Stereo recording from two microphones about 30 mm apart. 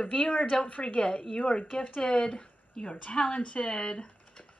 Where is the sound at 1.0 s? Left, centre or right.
Left.